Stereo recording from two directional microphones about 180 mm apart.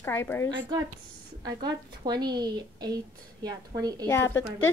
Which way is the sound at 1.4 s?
20° right (ahead or behind).